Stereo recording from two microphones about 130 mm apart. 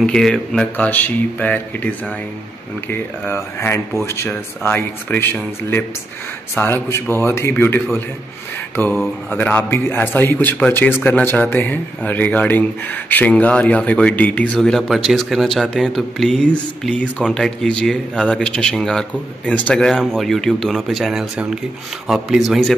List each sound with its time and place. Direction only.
0.0 s a man's voice: 5° left (ahead or behind)